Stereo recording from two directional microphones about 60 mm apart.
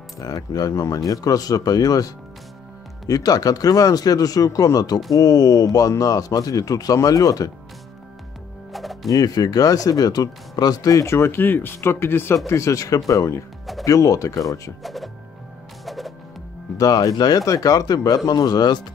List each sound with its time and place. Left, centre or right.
0.2 s speech: left
8.7 s music: centre
9.1 s speech: left
11.1 s speech: left
12.4 s speech: left
14.8 s speech: centre
15.8 s music: centre
16.7 s speech: left